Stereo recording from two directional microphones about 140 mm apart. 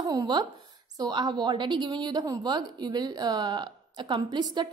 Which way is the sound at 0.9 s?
30° right (ahead or behind).